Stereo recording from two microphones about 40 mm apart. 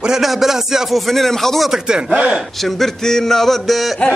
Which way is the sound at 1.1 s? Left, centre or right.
Centre.